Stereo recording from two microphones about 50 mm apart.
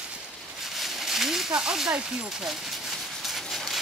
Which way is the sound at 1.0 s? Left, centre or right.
Centre.